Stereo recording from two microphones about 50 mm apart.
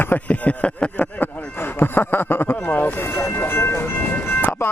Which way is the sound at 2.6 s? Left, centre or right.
Left.